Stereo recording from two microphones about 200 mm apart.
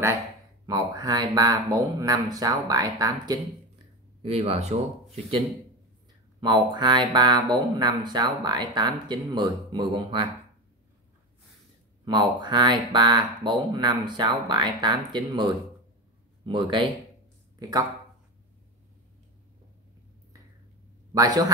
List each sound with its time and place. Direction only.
0.7 s speech: 20° right (ahead or behind)
4.2 s speech: 30° right (ahead or behind)
6.4 s speech: 20° right (ahead or behind)
12.0 s speech: 20° right (ahead or behind)
17.6 s speech: 20° right (ahead or behind)
21.1 s a man's voice: 20° right (ahead or behind)